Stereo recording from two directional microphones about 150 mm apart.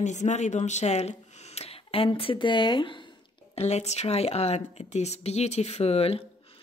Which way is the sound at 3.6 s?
45° left (ahead or behind).